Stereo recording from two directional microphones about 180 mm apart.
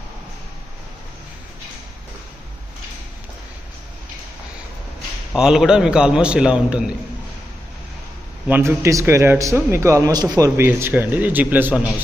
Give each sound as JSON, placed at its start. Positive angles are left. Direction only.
{"t": 5.3, "sound": "a man's voice", "side_deg": -5}
{"t": 8.5, "sound": "a man's voice", "side_deg": -10}